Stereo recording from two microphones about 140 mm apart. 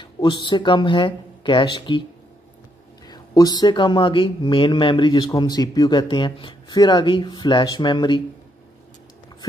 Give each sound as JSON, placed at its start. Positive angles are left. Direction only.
{"t": 0.0, "sound": "speech", "side_deg": 35}
{"t": 3.1, "sound": "speech", "side_deg": 30}